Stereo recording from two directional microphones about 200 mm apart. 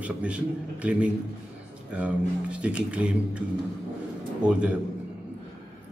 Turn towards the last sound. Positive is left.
turn(degrees=-5)  # may be behind; listen again after turning